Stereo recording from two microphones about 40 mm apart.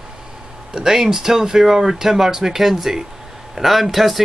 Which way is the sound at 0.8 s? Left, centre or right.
Centre.